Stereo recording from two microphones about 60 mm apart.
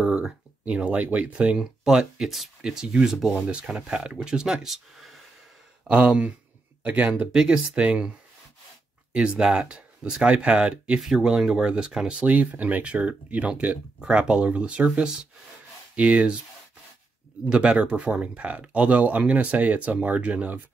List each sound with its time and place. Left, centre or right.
0.0 s speech: centre
1.3 s speech: centre
3.4 s speech: centre
5.9 s speech: centre
9.1 s speech: centre
16.0 s speech: right
17.5 s speech: centre